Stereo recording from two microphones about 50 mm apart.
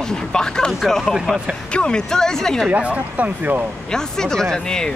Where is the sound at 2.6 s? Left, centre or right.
Right.